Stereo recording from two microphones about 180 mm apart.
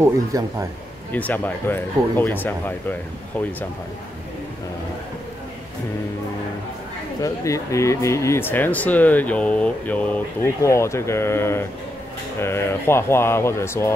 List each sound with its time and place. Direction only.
0.0 s speech: 20° right (ahead or behind)
1.1 s speech: 10° left (ahead or behind)
7.2 s speech: 20° left (ahead or behind)